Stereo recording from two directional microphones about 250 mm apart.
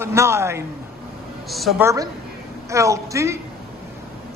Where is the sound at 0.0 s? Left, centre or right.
Centre.